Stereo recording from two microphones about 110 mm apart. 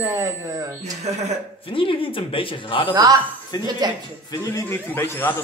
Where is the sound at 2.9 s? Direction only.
35° right (ahead or behind).